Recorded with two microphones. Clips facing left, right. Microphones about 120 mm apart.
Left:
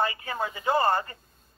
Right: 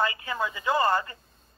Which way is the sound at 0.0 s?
40° left (ahead or behind).